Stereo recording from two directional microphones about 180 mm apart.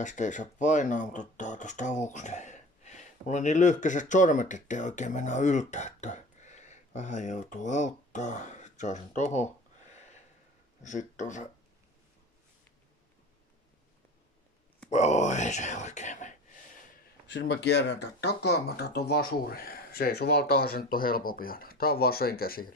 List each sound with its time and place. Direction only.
0.0 s speech: 45° left (ahead or behind)
10.8 s speech: 40° left (ahead or behind)
14.9 s speech: 40° left (ahead or behind)
17.3 s speech: 80° left; by 22.8 s 55° left (ahead or behind)